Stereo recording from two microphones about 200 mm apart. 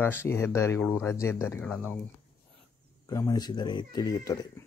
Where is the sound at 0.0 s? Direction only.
10° left (ahead or behind).